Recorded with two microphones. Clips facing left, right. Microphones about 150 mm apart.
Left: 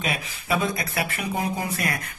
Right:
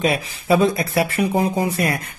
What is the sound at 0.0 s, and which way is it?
Speech, 30° right (ahead or behind).